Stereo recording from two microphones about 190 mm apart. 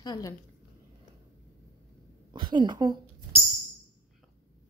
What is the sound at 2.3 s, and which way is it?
Speech, 25° right (ahead or behind).